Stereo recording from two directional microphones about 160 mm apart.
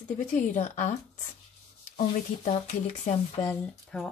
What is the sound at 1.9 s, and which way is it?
Speech, 45° left (ahead or behind).